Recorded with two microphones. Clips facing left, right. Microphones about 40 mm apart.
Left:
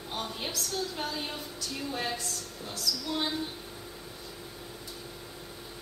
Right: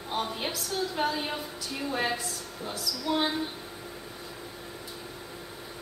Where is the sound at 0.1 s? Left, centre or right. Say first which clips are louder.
Right 4 dB; centre.